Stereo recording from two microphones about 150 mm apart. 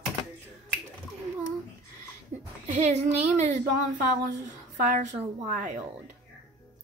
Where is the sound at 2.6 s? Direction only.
50° right (ahead or behind).